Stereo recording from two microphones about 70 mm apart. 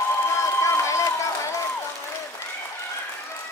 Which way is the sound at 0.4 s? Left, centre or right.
Left.